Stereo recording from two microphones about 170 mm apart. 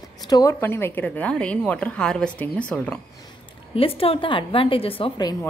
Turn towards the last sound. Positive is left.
turn(degrees=25)  # may be behind; listen again after turning